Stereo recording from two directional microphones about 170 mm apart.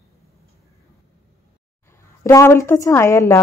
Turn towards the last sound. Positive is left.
turn(degrees=15)  # may be behind; listen again after turning